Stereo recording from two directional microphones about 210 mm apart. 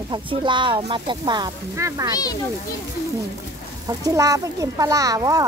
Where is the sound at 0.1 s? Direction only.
20° right (ahead or behind).